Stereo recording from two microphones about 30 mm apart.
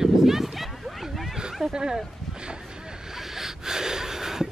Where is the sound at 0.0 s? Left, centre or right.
Centre.